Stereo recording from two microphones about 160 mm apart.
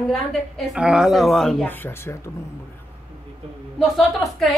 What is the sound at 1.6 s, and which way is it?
Speech, 10° left (ahead or behind).